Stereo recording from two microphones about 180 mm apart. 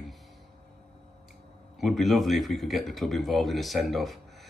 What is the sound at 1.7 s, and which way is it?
Speech, centre (ahead or behind).